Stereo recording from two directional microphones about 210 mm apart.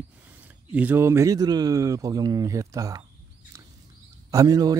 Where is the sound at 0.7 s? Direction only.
10° right (ahead or behind).